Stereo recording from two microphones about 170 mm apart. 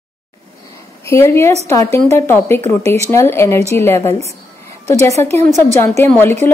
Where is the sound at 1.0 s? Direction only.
15° left (ahead or behind).